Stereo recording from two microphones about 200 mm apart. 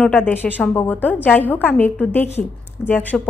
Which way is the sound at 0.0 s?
10° left (ahead or behind).